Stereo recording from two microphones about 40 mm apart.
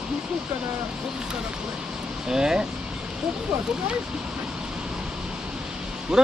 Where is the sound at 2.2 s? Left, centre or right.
Centre.